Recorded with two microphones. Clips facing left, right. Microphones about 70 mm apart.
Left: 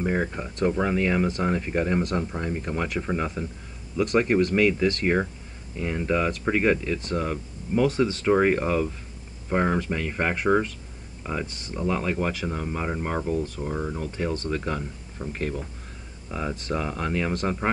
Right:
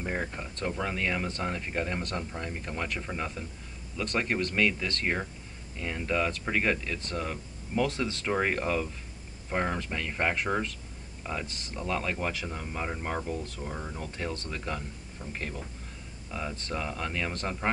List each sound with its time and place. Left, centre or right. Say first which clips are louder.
0.3 s speech: left 9 dB; centre
11.5 s speech: left 5 dB; centre
11.8 s speech: left 6 dB; centre
16.3 s speech: left 6 dB; centre